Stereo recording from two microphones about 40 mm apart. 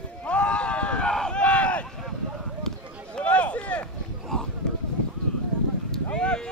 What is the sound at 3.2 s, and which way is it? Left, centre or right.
Run, left.